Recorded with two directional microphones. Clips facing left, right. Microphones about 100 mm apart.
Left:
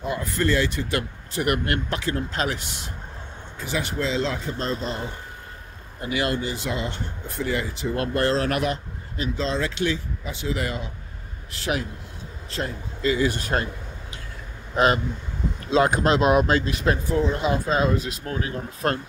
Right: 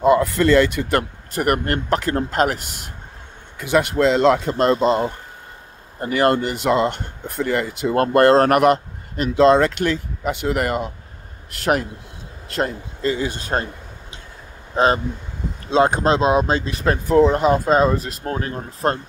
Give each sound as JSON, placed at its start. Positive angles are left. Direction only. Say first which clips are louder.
{"t": 0.0, "sound": "speech", "louder": "right 10 dB", "side_deg": -80}
{"t": 3.5, "sound": "speech", "louder": "right 10 dB", "side_deg": -65}
{"t": 5.9, "sound": "speech", "louder": "right 8 dB", "side_deg": -50}
{"t": 12.5, "sound": "a man's voice", "louder": "right 7 dB", "side_deg": -55}
{"t": 13.2, "sound": "speech", "louder": "even", "side_deg": -25}
{"t": 14.8, "sound": "speech", "louder": "right 3 dB", "side_deg": -30}
{"t": 17.1, "sound": "speech", "louder": "right 13 dB", "side_deg": -60}